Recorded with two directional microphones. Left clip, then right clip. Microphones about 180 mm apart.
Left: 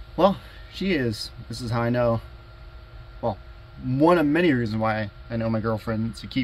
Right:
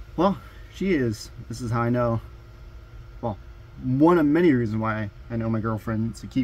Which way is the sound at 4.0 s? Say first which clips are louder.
Even; 15° right (ahead or behind).